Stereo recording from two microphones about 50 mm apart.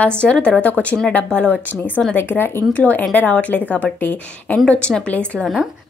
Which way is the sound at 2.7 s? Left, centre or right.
Left.